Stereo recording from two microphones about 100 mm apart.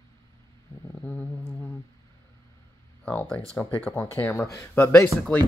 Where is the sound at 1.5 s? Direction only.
15° left (ahead or behind).